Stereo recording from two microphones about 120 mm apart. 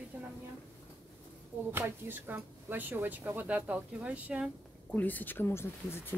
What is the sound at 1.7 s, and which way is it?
Speech, 15° right (ahead or behind).